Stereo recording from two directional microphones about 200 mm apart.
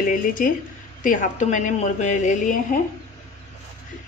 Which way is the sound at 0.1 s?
45° left (ahead or behind).